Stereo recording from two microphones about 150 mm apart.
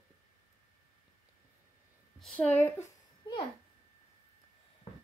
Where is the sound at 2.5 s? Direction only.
10° left (ahead or behind).